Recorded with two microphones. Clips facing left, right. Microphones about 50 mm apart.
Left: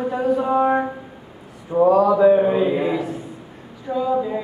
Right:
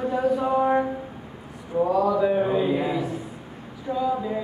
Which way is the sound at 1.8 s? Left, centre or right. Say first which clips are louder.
Left 8 dB; left.